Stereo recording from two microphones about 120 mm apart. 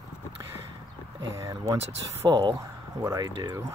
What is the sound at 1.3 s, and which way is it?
Speech, 25° right (ahead or behind).